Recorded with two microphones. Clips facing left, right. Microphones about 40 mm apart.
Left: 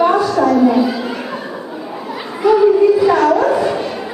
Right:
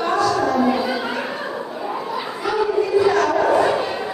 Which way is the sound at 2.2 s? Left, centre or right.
Centre.